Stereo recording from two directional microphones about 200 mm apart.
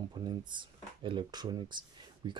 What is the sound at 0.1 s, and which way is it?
Speech, 20° right (ahead or behind).